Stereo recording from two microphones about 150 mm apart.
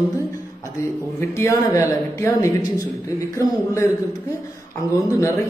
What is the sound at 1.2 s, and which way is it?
A man's voice, 20° left (ahead or behind).